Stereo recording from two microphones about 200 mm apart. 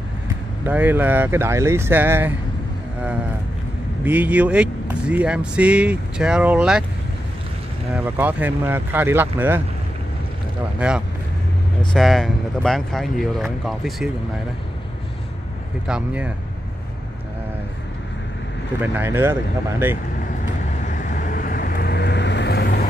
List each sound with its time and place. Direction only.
0.7 s speech: 10° right (ahead or behind)
4.0 s speech: 10° right (ahead or behind)
7.9 s speech: 10° right (ahead or behind)
10.8 s speech: 5° right (ahead or behind)
15.9 s speech: 5° right (ahead or behind)
18.8 s speech: 10° right (ahead or behind)
20.8 s vehicle: 40° left (ahead or behind)